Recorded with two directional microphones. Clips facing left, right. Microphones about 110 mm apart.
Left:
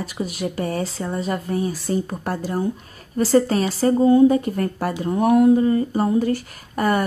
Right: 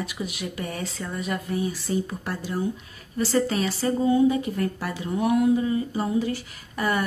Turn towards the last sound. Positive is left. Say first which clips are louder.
# left 5 dB
turn(degrees=45)  # may be behind; listen again after turning